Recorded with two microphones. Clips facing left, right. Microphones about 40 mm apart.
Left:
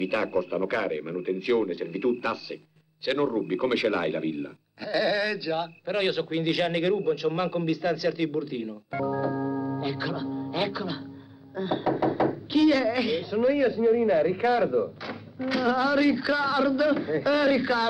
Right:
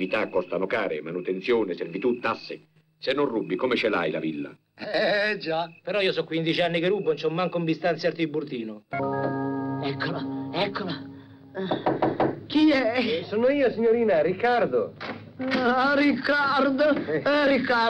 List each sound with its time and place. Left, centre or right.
0.0 s speech: centre